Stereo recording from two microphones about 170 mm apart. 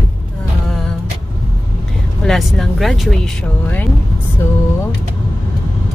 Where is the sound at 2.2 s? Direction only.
Centre (ahead or behind).